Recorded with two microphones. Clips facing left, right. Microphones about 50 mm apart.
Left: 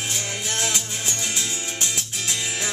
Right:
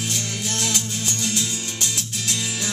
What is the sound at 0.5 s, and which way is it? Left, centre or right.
Music, left.